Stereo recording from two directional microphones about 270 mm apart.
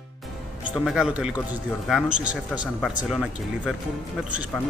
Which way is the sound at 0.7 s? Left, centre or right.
Centre.